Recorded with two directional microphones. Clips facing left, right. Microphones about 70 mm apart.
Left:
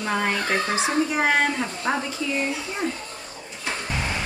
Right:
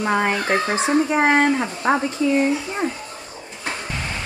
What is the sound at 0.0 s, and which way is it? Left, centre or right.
Speech, right.